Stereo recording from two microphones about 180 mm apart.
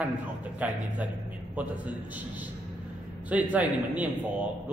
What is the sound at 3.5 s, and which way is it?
Speech, 5° right (ahead or behind).